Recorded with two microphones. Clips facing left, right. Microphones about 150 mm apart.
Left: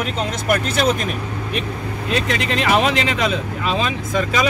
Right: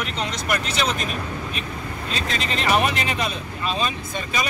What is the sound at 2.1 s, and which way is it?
Speech, 75° left (ahead or behind).